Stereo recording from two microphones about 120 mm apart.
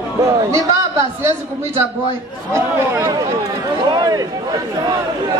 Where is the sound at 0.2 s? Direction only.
30° right (ahead or behind).